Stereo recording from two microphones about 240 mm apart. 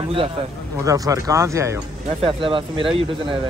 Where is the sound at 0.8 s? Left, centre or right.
Centre.